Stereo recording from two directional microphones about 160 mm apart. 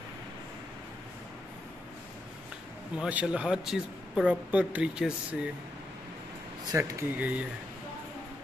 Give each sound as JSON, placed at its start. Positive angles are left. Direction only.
{"t": 3.0, "sound": "speech", "side_deg": -5}
{"t": 6.7, "sound": "speech", "side_deg": -20}